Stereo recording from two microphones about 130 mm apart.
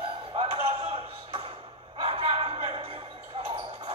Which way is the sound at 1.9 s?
50° right (ahead or behind).